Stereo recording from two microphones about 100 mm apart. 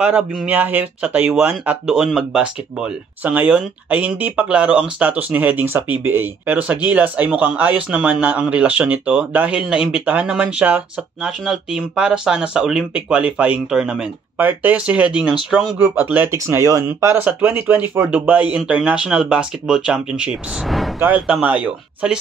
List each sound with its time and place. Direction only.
0.5 s speech: 15° right (ahead or behind)
1.9 s speech: 5° right (ahead or behind); by 16.8 s 30° right (ahead or behind)
17.2 s speech: 20° right (ahead or behind)
20.6 s vehicle: centre (ahead or behind)
21.3 s speech: 15° right (ahead or behind)